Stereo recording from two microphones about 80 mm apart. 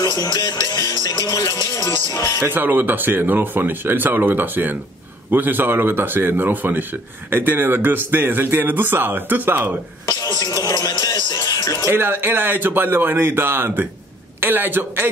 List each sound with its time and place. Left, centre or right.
0.0 s music: left
2.4 s speech: right
10.0 s speech: left
10.6 s music: left
11.4 s music: left
11.8 s speech: right